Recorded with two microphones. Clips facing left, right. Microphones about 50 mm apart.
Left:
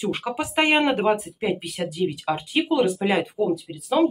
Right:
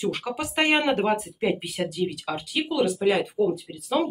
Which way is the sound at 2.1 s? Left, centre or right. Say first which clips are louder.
Left 4 dB; left.